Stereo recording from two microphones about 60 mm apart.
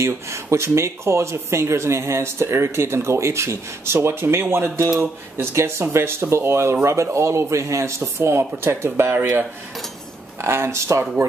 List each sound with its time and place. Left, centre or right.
0.0 s speech: right
8.0 s speech: right
10.4 s speech: right